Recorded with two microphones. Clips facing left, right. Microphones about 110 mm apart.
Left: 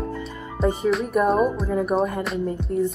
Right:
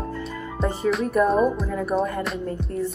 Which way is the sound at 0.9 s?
10° left (ahead or behind).